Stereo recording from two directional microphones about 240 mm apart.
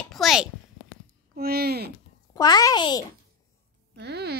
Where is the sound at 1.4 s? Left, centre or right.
Right.